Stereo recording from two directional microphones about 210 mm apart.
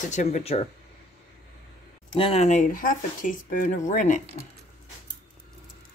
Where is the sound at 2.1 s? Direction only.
25° left (ahead or behind).